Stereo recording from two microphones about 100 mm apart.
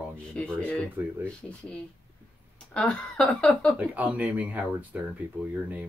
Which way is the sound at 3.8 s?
15° right (ahead or behind).